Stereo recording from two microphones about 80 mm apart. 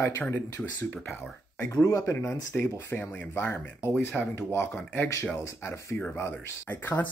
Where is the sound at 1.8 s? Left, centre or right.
Left.